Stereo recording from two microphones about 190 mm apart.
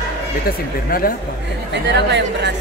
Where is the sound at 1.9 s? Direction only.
65° right (ahead or behind).